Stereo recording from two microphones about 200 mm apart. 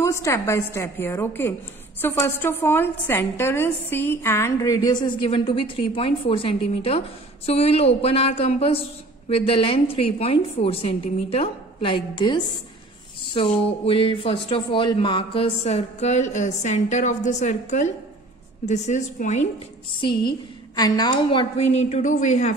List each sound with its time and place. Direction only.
0.0 s a woman's voice: 15° left (ahead or behind); by 19.4 s 35° left (ahead or behind)
20.0 s a woman's voice: 25° left (ahead or behind)